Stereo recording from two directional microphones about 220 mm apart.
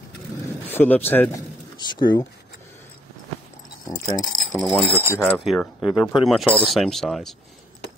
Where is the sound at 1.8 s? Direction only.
20° left (ahead or behind).